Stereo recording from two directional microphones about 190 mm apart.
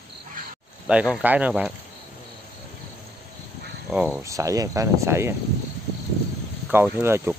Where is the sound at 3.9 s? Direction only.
10° right (ahead or behind).